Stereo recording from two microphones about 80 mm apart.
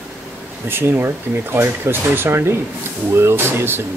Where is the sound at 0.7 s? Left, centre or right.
Right.